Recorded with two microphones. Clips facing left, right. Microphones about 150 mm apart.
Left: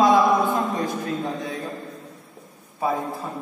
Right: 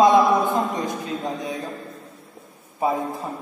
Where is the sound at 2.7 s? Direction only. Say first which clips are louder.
Right 2 dB; 20° right (ahead or behind).